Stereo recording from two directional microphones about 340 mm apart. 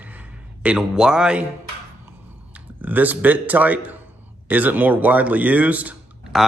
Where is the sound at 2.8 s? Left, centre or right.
Centre.